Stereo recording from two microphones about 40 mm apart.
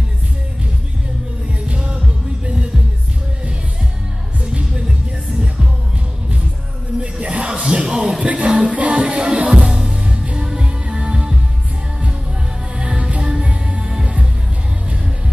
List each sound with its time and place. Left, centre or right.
1.7 s music: right
7.0 s music: right
8.3 s music: right
12.7 s music: right